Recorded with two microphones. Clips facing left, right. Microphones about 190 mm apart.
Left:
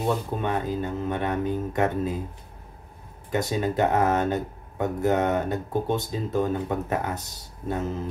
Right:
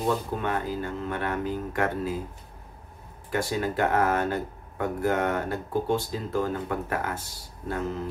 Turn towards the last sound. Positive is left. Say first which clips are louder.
# left 2 dB
turn(degrees=20)  # may be behind; listen again after turning